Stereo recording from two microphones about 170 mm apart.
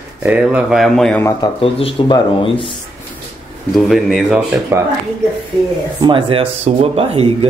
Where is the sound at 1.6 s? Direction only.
35° left (ahead or behind).